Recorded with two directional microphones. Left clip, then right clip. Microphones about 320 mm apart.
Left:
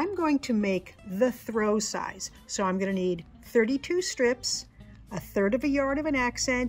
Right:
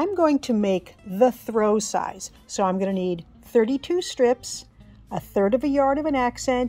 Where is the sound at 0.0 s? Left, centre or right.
Right.